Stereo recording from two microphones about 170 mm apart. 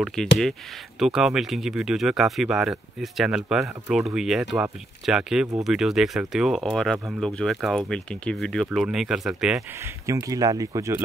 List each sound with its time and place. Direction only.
0.0 s speech: 5° left (ahead or behind)
10.0 s speech: 20° right (ahead or behind)